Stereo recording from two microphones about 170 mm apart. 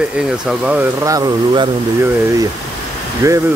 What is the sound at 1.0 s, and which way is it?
Speech, 20° right (ahead or behind).